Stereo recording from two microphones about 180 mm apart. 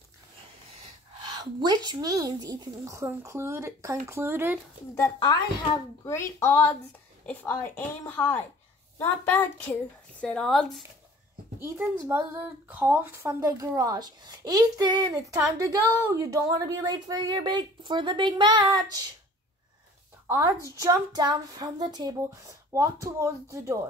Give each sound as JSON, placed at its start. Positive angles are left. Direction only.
{"t": 1.3, "sound": "a woman's voice", "side_deg": -20}
{"t": 4.9, "sound": "a woman's voice", "side_deg": 20}
{"t": 11.6, "sound": "speech", "side_deg": -15}
{"t": 20.2, "sound": "speech", "side_deg": -20}